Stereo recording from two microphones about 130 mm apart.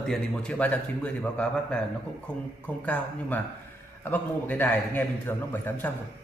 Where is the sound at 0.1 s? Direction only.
5° left (ahead or behind).